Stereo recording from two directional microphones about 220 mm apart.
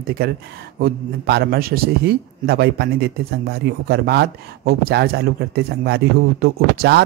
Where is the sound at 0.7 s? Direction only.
45° right (ahead or behind).